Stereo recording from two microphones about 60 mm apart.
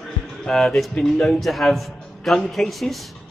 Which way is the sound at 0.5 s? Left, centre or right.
Centre.